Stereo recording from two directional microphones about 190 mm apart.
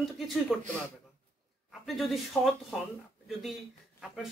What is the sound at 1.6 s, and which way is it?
Speech, centre (ahead or behind).